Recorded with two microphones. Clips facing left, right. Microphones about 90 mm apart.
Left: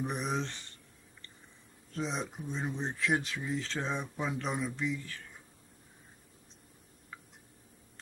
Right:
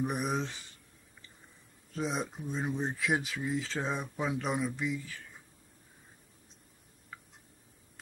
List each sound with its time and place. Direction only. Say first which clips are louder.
0.0 s speech: right 2 dB; 5° right (ahead or behind)
1.9 s speech: right 2 dB; 5° right (ahead or behind)